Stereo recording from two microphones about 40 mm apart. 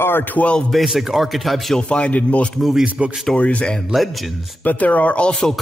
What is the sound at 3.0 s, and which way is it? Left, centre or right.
Speech, right.